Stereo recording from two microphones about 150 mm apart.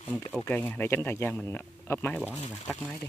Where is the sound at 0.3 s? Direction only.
10° left (ahead or behind).